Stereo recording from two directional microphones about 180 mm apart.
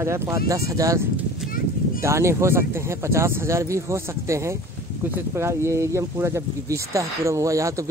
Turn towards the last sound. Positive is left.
turn(degrees=-15)  # may be behind; listen again after turning